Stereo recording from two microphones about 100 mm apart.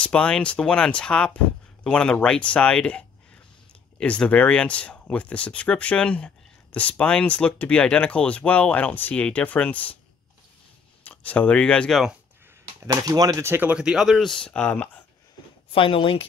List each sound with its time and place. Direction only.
0.0 s speech: 10° left (ahead or behind)
11.1 s speech: 15° left (ahead or behind)
12.8 s speech: 40° right (ahead or behind)
13.5 s speech: 15° right (ahead or behind); by 14.9 s 15° left (ahead or behind)
15.7 s speech: 65° left (ahead or behind)